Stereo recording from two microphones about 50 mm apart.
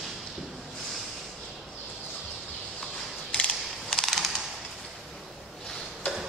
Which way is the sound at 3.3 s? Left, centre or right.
Centre.